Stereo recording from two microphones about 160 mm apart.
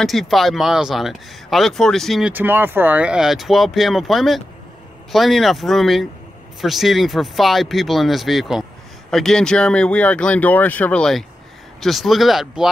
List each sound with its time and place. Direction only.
0.0 s speech: centre (ahead or behind)
2.3 s speech: 10° right (ahead or behind)